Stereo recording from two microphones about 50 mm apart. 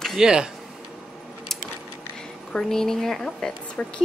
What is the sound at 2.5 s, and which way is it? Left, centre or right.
A woman's voice, centre.